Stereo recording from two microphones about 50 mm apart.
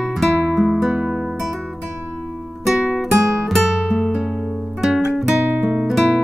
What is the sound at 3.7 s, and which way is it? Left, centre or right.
Music, centre.